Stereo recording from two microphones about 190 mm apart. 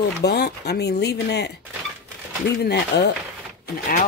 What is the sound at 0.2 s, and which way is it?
Speech, 55° left (ahead or behind).